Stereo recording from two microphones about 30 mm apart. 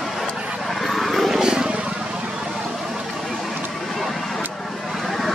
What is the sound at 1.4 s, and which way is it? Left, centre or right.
Vehicle, right.